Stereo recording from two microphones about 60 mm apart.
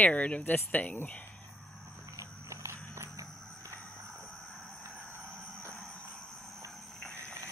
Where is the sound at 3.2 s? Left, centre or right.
Right.